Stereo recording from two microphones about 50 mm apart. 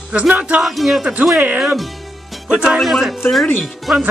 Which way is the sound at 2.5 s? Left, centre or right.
Centre.